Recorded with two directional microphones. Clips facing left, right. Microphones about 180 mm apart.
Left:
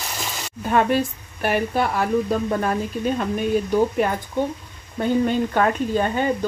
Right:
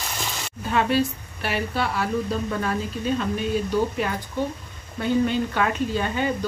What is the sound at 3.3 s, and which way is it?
Speech, 50° left (ahead or behind).